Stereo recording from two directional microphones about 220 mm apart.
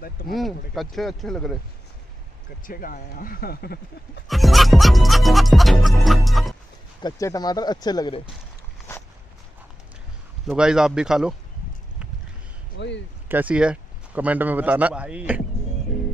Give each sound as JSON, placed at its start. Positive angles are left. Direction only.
{"t": 0.3, "sound": "music", "side_deg": 0}
{"t": 2.6, "sound": "speech", "side_deg": 40}
{"t": 4.3, "sound": "music", "side_deg": 0}
{"t": 7.0, "sound": "speech", "side_deg": 15}
{"t": 10.4, "sound": "music", "side_deg": -5}
{"t": 12.7, "sound": "speech", "side_deg": 55}
{"t": 13.3, "sound": "a man's voice", "side_deg": -5}